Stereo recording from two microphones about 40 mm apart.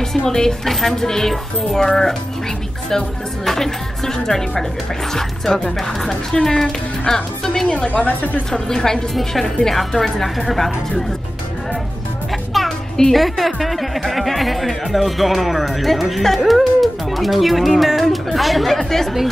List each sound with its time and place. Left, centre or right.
0.3 s speech: centre
3.4 s speech: centre
7.9 s speech: left
8.5 s speech: centre
12.5 s music: centre
13.1 s speech: centre